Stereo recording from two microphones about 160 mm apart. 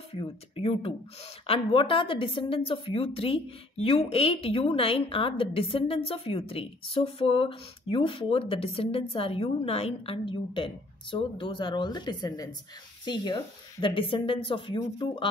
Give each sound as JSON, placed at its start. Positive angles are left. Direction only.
{"t": 0.1, "sound": "a woman's voice", "side_deg": 35}